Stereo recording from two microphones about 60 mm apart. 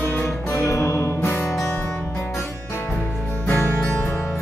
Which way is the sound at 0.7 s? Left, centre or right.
Left.